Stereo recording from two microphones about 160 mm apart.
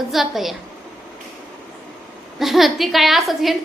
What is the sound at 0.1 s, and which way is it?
Speech, centre (ahead or behind).